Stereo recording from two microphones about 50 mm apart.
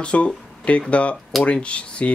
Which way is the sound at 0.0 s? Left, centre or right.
Left.